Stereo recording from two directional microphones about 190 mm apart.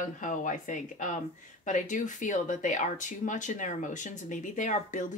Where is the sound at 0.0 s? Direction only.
40° left (ahead or behind).